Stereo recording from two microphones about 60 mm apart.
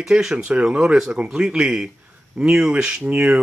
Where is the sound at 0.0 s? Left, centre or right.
Centre.